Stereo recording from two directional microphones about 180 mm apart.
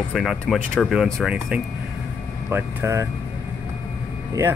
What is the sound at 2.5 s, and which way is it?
Speech, 15° right (ahead or behind).